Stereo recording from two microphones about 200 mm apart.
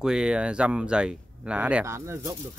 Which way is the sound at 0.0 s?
5° right (ahead or behind).